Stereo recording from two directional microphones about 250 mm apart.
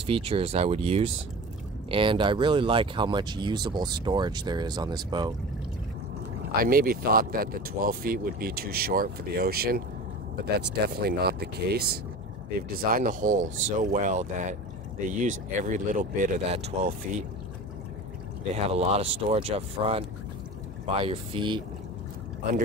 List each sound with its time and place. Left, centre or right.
0.0 s speech: right
6.6 s speech: right
18.5 s speech: right